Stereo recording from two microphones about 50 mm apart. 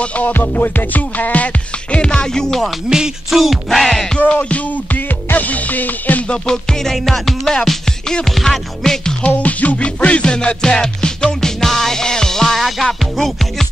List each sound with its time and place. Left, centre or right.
0.3 s music: left; by 2.7 s centre
2.9 s music: centre
4.3 s music: left
6.2 s music: centre
9.4 s music: left; by 13.7 s centre